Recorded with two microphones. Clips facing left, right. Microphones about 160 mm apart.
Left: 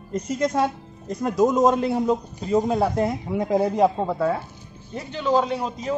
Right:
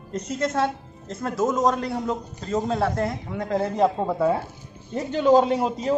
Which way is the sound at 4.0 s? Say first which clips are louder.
Even; 5° right (ahead or behind).